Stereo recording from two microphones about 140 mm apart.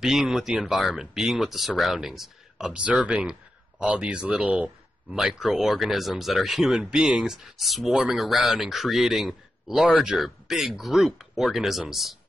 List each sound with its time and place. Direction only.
0.0 s speech: centre (ahead or behind)